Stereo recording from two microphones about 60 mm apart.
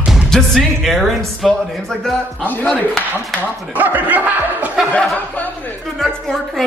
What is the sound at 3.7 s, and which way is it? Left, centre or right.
Speech, right.